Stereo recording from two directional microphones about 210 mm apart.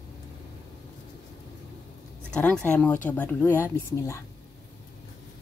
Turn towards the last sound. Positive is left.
turn(degrees=15)  # may be behind; listen again after turning